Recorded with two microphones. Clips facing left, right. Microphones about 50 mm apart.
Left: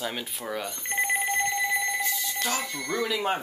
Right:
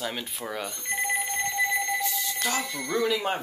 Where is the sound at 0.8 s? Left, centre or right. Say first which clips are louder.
Left 2 dB; left.